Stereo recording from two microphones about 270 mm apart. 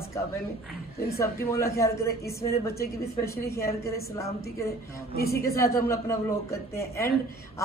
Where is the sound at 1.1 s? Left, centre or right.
Centre.